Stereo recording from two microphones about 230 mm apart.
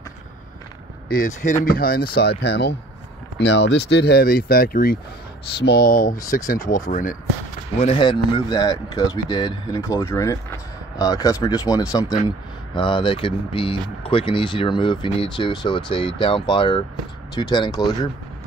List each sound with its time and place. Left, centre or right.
1.0 s speech: left
7.8 s speech: left